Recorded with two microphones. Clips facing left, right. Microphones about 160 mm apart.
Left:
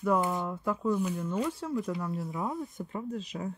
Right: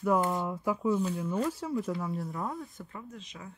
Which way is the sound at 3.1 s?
40° left (ahead or behind).